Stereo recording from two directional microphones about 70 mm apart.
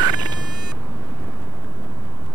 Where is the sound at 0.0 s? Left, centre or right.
Right.